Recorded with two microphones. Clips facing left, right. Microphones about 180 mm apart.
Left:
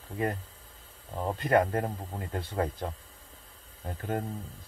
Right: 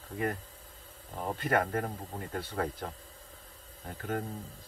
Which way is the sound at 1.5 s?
30° left (ahead or behind).